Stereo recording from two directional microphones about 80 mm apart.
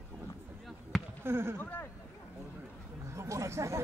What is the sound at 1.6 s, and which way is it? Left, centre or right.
Speech, left.